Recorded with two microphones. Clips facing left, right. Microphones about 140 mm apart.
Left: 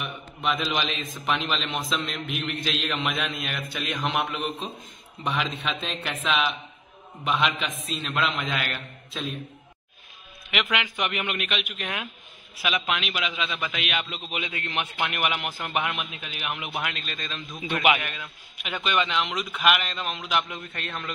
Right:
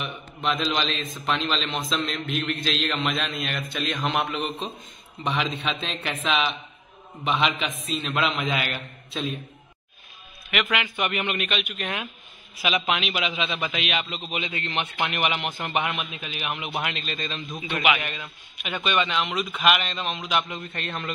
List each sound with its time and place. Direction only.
0.0 s a man's voice: 5° left (ahead or behind)
10.5 s a man's voice: 15° left (ahead or behind); by 18.8 s centre (ahead or behind)
18.8 s speech: 15° right (ahead or behind)
19.6 s a man's voice: 5° left (ahead or behind)